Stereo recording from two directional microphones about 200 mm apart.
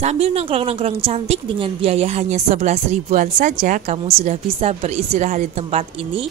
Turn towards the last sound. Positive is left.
turn(degrees=-30)  # may be behind; listen again after turning